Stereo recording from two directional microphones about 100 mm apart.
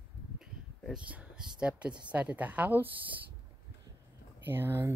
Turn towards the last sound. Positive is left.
turn(degrees=-25)  # may be behind; listen again after turning